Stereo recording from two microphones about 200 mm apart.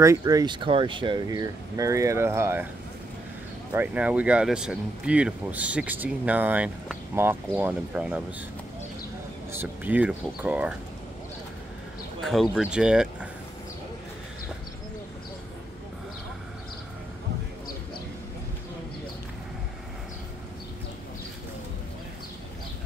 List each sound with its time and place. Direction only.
0.0 s speech: 15° right (ahead or behind)
3.7 s speech: 10° right (ahead or behind)
9.5 s speech: 10° right (ahead or behind)
12.2 s speech: centre (ahead or behind)